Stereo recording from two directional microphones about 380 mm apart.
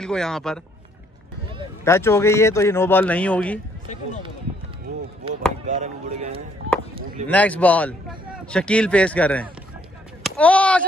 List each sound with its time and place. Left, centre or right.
0.0 s a man's voice: centre
1.9 s speech: centre
5.7 s speech: centre
7.2 s a man's voice: centre